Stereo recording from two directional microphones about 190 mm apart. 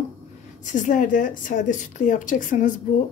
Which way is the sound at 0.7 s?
45° left (ahead or behind).